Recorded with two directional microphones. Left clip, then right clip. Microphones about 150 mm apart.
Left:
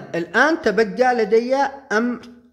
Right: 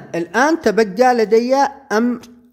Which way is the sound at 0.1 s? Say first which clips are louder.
Right 1 dB; 10° right (ahead or behind).